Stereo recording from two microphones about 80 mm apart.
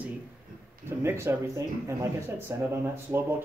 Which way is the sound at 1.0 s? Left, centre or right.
Right.